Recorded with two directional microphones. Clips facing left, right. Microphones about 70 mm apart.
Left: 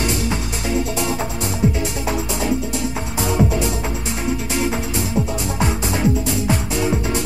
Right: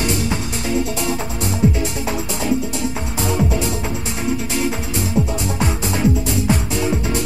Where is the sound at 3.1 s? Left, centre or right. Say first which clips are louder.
Left 2 dB; centre.